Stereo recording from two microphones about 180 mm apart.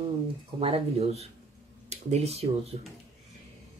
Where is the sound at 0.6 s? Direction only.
35° right (ahead or behind).